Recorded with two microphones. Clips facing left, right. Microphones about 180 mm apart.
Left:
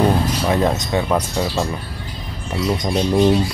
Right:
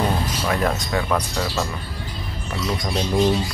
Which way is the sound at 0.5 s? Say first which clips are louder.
Left 3 dB; 25° left (ahead or behind).